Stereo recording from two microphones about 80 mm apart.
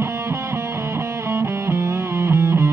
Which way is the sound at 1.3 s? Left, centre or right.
Right.